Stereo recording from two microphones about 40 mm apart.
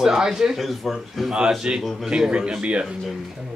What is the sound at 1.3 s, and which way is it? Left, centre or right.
Speech, centre.